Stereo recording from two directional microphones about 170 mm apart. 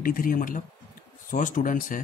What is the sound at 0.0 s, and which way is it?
Speech, 55° left (ahead or behind).